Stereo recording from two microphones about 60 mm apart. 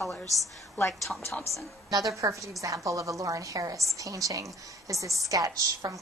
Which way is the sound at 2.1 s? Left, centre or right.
Right.